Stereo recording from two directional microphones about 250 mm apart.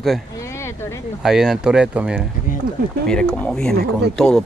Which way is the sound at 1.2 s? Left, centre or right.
Centre.